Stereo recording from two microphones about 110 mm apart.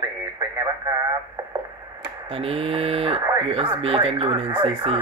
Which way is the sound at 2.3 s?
60° right (ahead or behind).